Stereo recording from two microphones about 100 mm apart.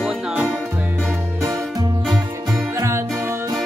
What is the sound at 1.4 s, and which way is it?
Music, 35° right (ahead or behind).